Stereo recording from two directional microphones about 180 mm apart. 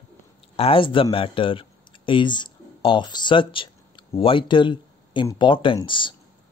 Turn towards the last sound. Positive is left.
turn(degrees=25)  # may be behind; listen again after turning